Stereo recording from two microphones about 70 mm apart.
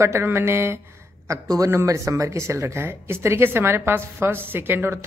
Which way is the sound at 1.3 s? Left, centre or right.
Right.